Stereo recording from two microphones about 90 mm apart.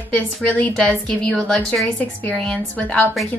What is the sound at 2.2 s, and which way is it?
Speech, 15° left (ahead or behind).